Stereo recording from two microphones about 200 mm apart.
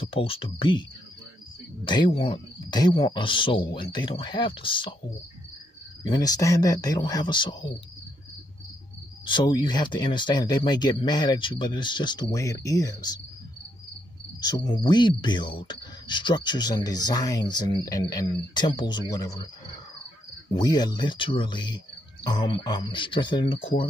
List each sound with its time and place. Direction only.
0.0 s speech: 25° left (ahead or behind)
1.9 s speech: 25° left (ahead or behind)
6.0 s speech: 20° left (ahead or behind)
9.2 s speech: 25° left (ahead or behind)
14.4 s speech: 20° left (ahead or behind)
20.5 s speech: 20° left (ahead or behind)